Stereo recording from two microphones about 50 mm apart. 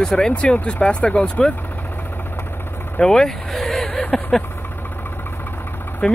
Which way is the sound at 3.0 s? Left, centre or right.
Centre.